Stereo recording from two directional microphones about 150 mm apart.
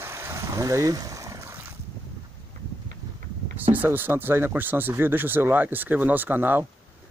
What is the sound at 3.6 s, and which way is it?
Speech, 10° right (ahead or behind).